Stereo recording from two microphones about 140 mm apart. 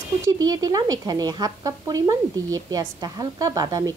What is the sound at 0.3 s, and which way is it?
Speech, 25° right (ahead or behind).